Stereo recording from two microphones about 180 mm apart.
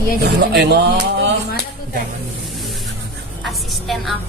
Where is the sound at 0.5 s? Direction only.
75° right (ahead or behind).